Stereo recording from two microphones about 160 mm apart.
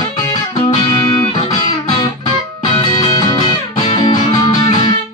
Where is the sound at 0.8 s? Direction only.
25° left (ahead or behind).